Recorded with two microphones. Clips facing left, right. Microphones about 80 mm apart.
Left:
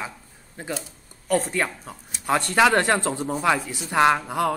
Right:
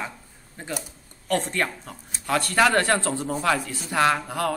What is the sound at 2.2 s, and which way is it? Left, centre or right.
Speech, left.